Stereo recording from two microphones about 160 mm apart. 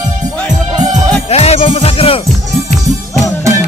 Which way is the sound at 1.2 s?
40° left (ahead or behind).